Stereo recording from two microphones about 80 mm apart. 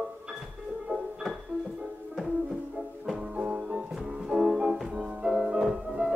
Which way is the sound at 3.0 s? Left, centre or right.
Centre.